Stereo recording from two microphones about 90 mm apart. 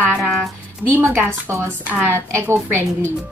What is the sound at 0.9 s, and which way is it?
Speech, 30° right (ahead or behind).